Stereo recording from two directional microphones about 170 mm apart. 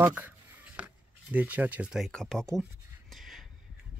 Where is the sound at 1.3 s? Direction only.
10° right (ahead or behind).